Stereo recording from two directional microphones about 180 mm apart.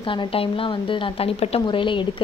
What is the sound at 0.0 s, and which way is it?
A woman's voice, 30° left (ahead or behind).